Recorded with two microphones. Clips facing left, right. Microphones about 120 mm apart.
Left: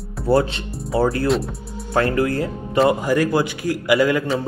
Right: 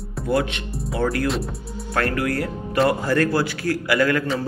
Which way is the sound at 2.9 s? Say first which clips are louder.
Left 2 dB; 15° left (ahead or behind).